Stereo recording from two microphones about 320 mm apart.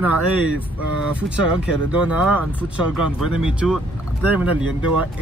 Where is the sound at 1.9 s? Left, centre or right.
Centre.